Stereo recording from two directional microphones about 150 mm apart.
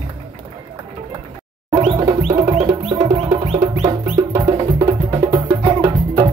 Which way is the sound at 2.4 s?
20° right (ahead or behind).